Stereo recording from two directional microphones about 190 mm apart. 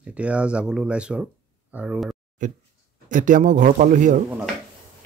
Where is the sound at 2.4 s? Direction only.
40° right (ahead or behind).